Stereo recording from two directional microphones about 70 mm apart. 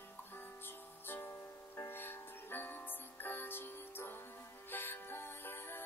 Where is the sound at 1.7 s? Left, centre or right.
Left.